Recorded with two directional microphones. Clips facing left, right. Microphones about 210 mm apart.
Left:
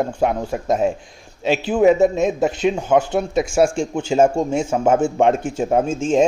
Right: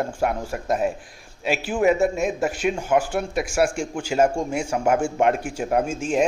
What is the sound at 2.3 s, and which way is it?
A man's voice, 20° left (ahead or behind).